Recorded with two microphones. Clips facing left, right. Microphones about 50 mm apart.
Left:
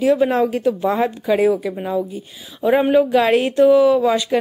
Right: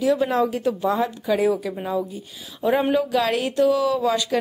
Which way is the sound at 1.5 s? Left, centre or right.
Centre.